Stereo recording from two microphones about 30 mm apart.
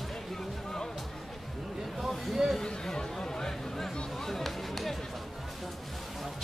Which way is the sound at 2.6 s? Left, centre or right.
Left.